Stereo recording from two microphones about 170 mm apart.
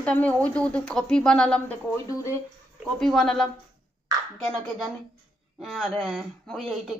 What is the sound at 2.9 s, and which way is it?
Speech, centre (ahead or behind).